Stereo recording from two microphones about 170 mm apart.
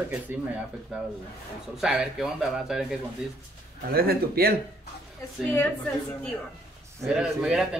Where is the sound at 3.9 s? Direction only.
65° right (ahead or behind).